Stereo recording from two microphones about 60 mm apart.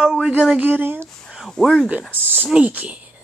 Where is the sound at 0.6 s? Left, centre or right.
Right.